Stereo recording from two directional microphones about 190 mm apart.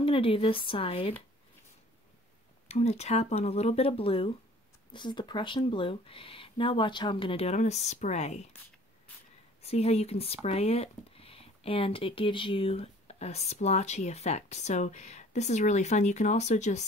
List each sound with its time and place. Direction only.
0.0 s speech: 30° left (ahead or behind)
2.7 s speech: 35° left (ahead or behind)
9.6 s speech: 35° left (ahead or behind)